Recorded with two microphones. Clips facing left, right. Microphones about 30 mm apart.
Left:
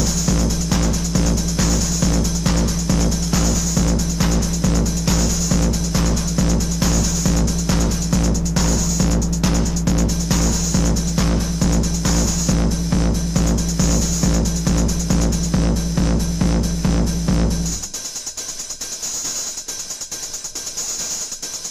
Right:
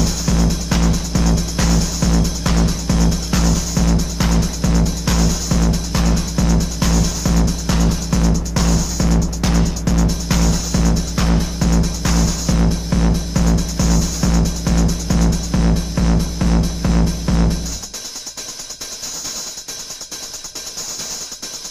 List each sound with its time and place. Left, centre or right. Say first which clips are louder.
0.0 s music: right 1 dB; centre